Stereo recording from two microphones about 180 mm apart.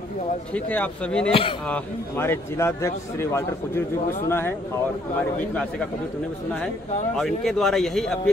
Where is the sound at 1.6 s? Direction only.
10° left (ahead or behind).